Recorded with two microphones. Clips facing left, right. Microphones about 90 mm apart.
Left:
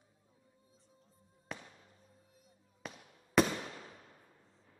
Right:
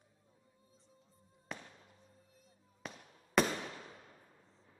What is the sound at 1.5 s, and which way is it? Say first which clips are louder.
Fireworks: left 1 dB; centre (ahead or behind).